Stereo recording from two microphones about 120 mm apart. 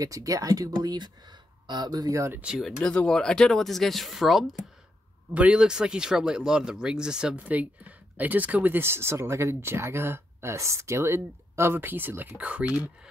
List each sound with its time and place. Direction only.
0.0 s speech: 30° right (ahead or behind)
2.4 s speech: centre (ahead or behind)